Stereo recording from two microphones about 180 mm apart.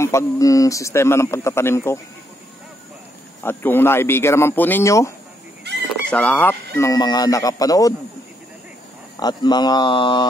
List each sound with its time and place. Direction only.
0.0 s speech: 15° left (ahead or behind)
3.4 s speech: 10° left (ahead or behind)
5.7 s fowl: 70° right (ahead or behind)
6.0 s speech: 10° left (ahead or behind)
9.1 s speech: 20° left (ahead or behind)